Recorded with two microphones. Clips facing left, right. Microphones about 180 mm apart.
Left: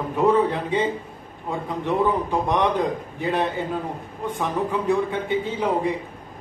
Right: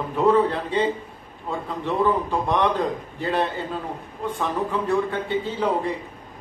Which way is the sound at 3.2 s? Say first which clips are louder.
Even; 15° left (ahead or behind).